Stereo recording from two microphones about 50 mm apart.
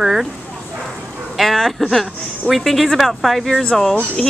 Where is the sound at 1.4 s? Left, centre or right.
Centre.